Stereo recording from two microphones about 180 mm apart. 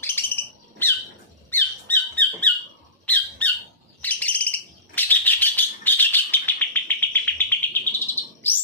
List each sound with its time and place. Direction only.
0.0 s bird: 10° left (ahead or behind)
1.5 s squeak: 10° left (ahead or behind)
3.1 s bird: 10° left (ahead or behind)